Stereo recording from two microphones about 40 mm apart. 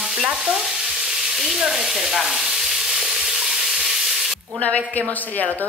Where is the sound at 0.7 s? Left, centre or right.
Centre.